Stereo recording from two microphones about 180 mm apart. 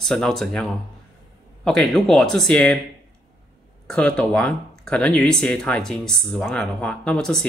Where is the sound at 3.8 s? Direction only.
5° left (ahead or behind).